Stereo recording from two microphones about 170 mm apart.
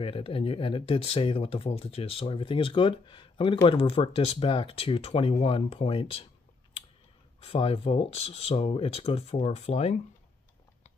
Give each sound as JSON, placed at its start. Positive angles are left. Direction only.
{"t": 0.0, "sound": "speech", "side_deg": 30}
{"t": 7.3, "sound": "speech", "side_deg": 35}